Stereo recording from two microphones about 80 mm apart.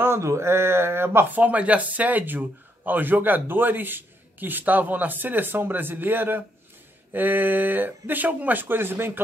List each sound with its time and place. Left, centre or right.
0.0 s speech: right